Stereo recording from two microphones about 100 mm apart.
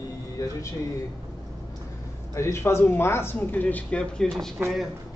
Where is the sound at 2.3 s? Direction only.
25° left (ahead or behind); by 4.5 s 5° left (ahead or behind).